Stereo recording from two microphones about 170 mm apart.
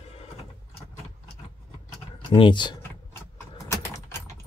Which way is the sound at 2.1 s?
30° left (ahead or behind).